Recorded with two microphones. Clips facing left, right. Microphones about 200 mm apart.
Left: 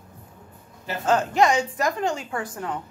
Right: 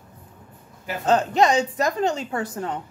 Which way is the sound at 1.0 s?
20° right (ahead or behind).